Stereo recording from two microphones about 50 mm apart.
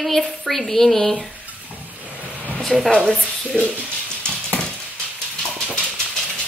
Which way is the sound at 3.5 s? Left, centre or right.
Centre.